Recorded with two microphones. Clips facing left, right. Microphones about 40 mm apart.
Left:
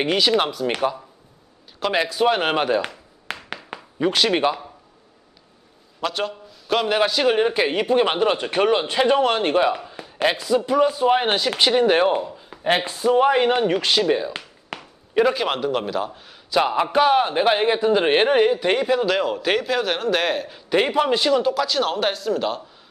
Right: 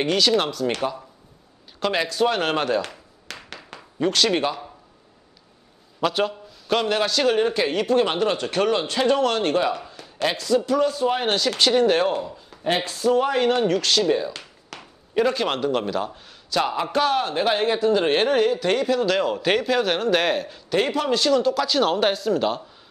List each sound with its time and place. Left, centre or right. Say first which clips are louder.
0.0 s a man's voice: left 1 dB; centre
3.3 s a sound: left 6 dB; left
3.7 s speech: left 1 dB; centre
5.9 s a man's voice: right 3 dB; centre
7.0 s speech: left 2 dB; centre
14.7 s a sound: left 6 dB; left
15.1 s a man's voice: left 2 dB; centre
16.4 s a man's voice: left 4 dB; centre
20.5 s speech: left 3 dB; left
21.6 s speech: right 2 dB; centre